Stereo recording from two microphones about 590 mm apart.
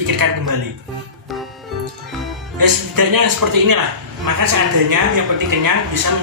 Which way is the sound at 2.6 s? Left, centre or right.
Right.